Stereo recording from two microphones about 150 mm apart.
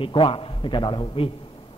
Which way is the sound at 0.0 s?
35° left (ahead or behind).